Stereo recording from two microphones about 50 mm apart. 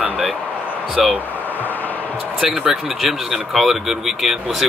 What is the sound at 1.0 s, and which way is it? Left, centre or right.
Speech, centre.